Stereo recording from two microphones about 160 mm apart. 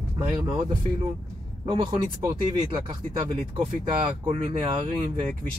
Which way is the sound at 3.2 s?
40° right (ahead or behind).